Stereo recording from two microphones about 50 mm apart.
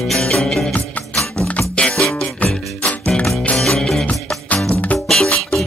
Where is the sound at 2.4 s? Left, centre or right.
Left.